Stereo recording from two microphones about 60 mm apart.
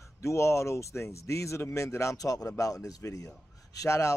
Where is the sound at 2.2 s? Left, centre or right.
Left.